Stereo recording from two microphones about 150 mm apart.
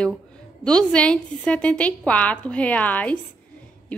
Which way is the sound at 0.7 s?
5° left (ahead or behind).